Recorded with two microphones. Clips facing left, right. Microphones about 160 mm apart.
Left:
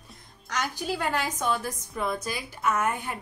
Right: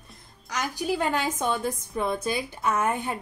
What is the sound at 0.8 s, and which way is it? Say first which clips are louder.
A woman's voice: right 4 dB; 15° right (ahead or behind).